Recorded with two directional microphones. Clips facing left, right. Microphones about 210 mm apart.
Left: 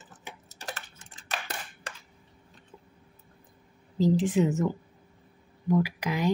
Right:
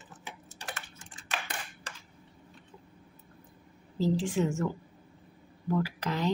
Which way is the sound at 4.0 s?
20° left (ahead or behind).